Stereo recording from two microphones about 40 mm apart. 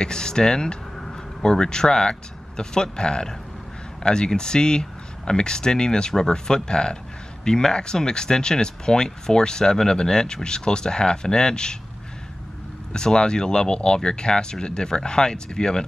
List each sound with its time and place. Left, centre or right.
0.0 s speech: centre
12.9 s speech: left